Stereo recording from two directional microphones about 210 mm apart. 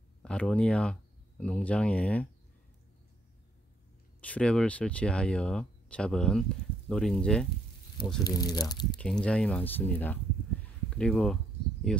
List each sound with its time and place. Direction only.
0.2 s speech: 5° left (ahead or behind)
4.2 s speech: 5° left (ahead or behind)
8.2 s speech: 20° left (ahead or behind)
8.9 s speech: 5° left (ahead or behind)